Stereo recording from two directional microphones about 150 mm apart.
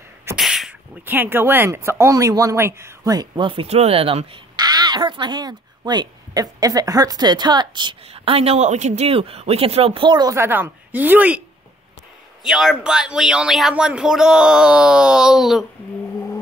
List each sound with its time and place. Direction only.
0.4 s speech: centre (ahead or behind); by 10.3 s 30° right (ahead or behind)
10.3 s speech: 15° right (ahead or behind)
12.4 s speech: 5° right (ahead or behind)